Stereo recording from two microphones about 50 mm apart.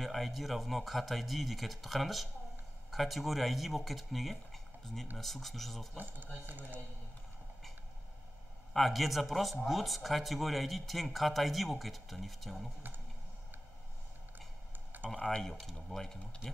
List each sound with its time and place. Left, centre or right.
0.0 s speech: centre
6.4 s a man's voice: right
8.7 s speech: centre
15.0 s speech: centre